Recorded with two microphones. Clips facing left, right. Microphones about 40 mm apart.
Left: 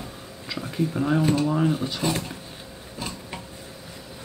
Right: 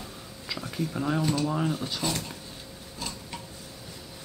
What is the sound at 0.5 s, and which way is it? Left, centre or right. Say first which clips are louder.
Speech: left 5 dB; centre.